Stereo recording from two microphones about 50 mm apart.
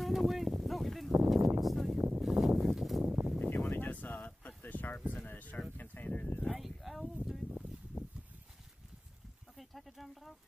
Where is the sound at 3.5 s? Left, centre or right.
Left.